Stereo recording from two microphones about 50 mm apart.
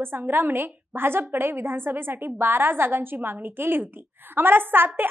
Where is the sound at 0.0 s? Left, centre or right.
Right.